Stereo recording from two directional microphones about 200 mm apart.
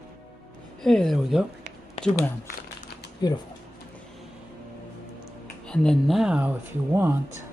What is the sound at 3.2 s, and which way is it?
Speech, 20° left (ahead or behind).